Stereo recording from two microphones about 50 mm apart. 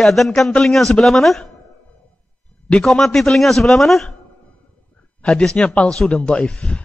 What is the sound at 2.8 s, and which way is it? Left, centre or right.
A man's voice, centre.